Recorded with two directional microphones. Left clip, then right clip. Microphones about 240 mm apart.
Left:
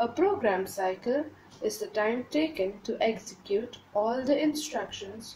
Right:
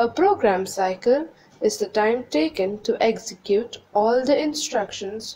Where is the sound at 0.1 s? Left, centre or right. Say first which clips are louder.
Right 8 dB; right.